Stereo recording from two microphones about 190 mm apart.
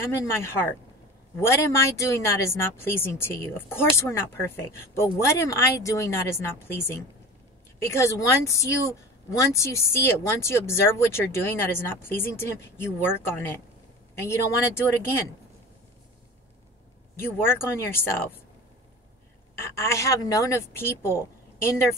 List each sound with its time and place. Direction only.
0.1 s speech: 15° left (ahead or behind)
7.9 s speech: 15° left (ahead or behind)
17.2 s speech: 10° left (ahead or behind)
19.6 s speech: 15° left (ahead or behind)